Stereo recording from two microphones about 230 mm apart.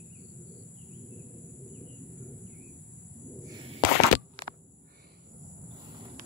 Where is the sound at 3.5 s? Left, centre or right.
Centre.